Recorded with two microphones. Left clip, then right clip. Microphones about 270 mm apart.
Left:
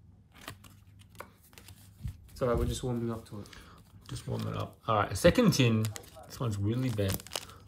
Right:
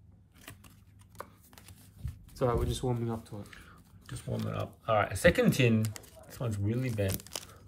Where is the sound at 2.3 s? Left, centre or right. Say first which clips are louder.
Even; right.